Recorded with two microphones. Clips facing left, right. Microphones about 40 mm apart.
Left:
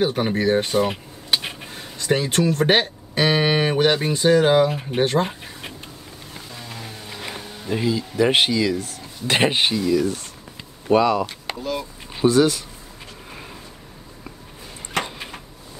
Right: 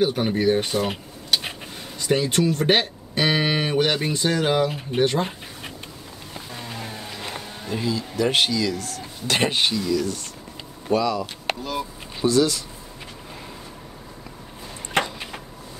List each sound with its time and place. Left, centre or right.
0.0 s music: centre
2.0 s music: centre
2.3 s speech: left
2.6 s speech: centre
3.3 s music: centre
7.7 s speech: left
10.9 s speech: left
12.2 s speech: left